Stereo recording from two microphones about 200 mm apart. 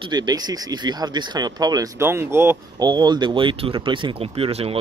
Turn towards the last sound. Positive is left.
turn(degrees=-30)  # may be behind; listen again after turning